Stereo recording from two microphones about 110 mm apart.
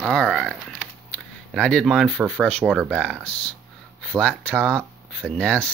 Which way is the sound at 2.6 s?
10° right (ahead or behind).